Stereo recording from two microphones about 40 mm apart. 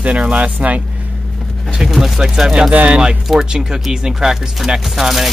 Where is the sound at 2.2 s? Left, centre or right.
Centre.